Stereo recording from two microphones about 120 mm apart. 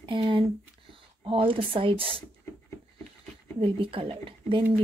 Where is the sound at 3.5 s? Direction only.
45° right (ahead or behind).